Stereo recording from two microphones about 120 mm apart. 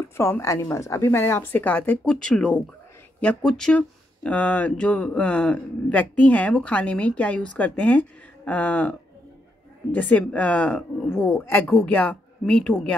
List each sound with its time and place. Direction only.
0.2 s a woman's voice: 25° left (ahead or behind)
9.9 s speech: 15° left (ahead or behind)